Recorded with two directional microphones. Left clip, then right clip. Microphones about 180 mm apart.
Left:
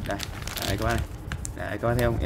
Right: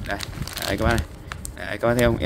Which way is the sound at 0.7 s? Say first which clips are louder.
Right 5 dB; 45° right (ahead or behind).